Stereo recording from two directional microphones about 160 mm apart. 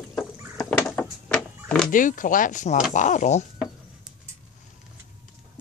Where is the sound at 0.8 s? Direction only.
10° left (ahead or behind).